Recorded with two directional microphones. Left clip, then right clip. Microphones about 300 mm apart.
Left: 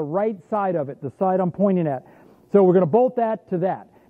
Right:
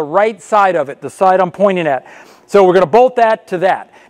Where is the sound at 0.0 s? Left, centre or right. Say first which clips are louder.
Right 10 dB; centre.